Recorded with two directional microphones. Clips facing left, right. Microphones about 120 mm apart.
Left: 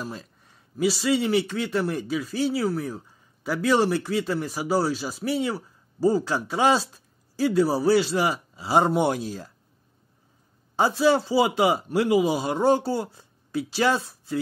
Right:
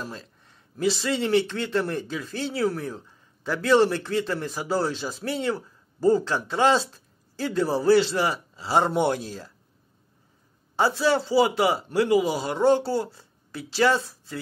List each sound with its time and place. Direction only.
0.0 s speech: 15° left (ahead or behind)
10.8 s speech: 15° left (ahead or behind)